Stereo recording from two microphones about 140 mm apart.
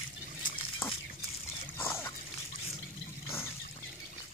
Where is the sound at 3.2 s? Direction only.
15° left (ahead or behind).